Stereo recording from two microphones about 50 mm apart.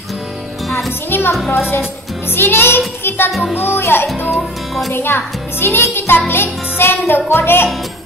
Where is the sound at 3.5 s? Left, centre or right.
Left.